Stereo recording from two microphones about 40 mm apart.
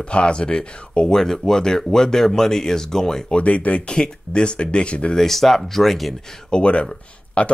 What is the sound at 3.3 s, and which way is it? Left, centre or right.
Speech, left.